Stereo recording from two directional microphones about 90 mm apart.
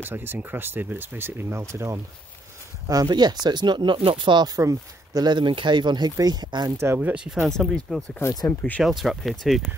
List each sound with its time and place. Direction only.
0.0 s speech: 25° right (ahead or behind)
2.9 s speech: 45° right (ahead or behind)
4.6 s speech: 40° right (ahead or behind)
7.0 s speech: 15° right (ahead or behind)
7.2 s speech: centre (ahead or behind)
8.2 s speech: 40° left (ahead or behind)
8.5 s speech: 20° left (ahead or behind)
8.8 s speech: centre (ahead or behind)